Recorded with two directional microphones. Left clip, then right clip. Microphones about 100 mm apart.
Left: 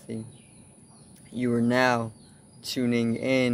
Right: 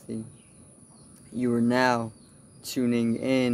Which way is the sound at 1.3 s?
20° right (ahead or behind).